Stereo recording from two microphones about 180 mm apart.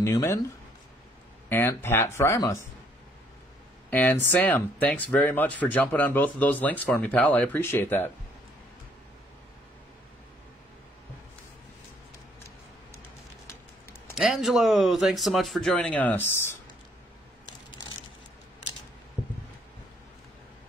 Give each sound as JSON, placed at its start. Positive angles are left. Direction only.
{"t": 0.0, "sound": "speech", "side_deg": 15}
{"t": 1.5, "sound": "speech", "side_deg": 15}
{"t": 3.9, "sound": "speech", "side_deg": 10}
{"t": 14.1, "sound": "speech", "side_deg": 0}